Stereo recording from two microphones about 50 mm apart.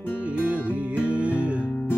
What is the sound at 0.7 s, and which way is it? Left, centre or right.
Music, right.